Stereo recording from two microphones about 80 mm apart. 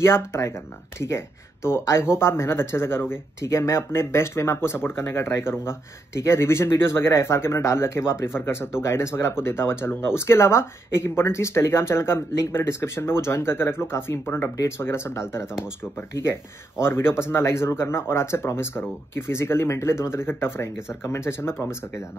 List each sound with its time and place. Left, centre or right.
0.0 s speech: left
16.8 s speech: left